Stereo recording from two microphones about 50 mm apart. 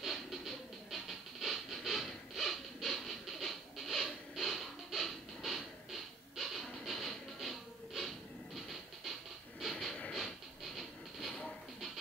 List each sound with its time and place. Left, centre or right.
0.0 s music: centre
9.6 s a sound: centre
10.8 s train: centre